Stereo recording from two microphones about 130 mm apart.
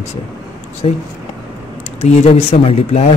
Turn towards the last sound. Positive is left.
turn(degrees=55)  # may be behind; listen again after turning